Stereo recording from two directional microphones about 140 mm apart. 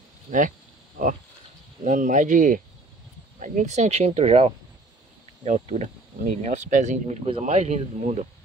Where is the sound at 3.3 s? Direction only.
60° right (ahead or behind).